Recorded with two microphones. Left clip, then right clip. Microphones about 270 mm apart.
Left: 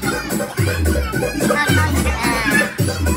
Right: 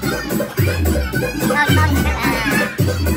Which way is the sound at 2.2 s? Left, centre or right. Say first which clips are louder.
Left 2 dB; centre.